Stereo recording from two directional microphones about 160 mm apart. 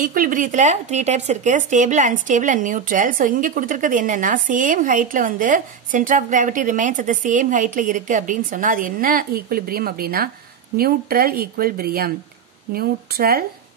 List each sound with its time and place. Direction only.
0.0 s speech: 60° right (ahead or behind)